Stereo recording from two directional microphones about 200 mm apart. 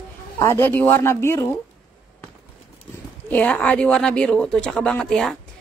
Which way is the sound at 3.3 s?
10° left (ahead or behind).